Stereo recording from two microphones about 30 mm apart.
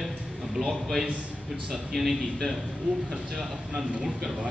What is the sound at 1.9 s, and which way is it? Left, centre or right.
Speech, centre.